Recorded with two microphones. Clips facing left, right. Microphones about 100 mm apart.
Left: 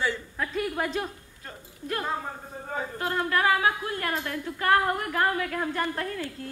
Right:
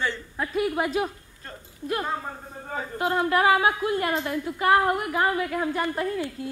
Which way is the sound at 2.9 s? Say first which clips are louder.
Right 5 dB; 15° right (ahead or behind).